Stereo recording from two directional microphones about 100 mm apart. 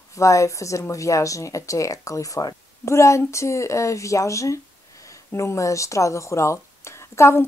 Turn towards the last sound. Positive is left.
turn(degrees=30)  # may be behind; listen again after turning